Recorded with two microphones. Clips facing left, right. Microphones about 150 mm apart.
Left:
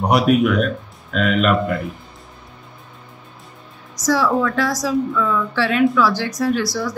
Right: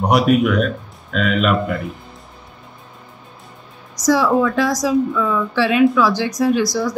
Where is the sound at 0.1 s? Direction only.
Centre (ahead or behind).